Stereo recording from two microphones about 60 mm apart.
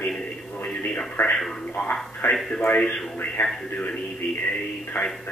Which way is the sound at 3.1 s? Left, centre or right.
Left.